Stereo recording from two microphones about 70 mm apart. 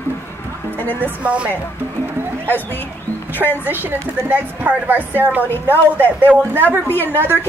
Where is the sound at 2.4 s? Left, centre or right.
Left.